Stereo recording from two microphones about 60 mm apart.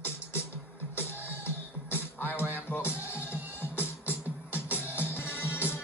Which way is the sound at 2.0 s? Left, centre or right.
Left.